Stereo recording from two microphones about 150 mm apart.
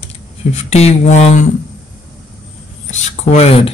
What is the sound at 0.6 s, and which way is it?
Speech, 45° left (ahead or behind).